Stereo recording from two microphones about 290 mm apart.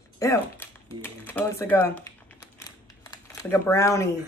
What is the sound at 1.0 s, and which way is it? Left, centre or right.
Typing, centre.